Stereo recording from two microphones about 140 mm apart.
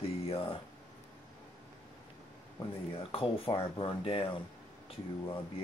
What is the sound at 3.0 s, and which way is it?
Speech, 40° left (ahead or behind).